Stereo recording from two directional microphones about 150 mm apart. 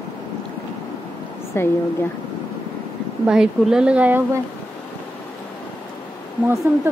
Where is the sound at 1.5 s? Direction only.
15° left (ahead or behind).